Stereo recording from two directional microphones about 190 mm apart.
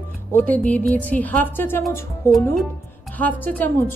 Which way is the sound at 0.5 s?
10° left (ahead or behind).